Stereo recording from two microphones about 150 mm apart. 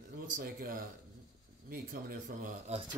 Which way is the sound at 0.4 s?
75° right (ahead or behind).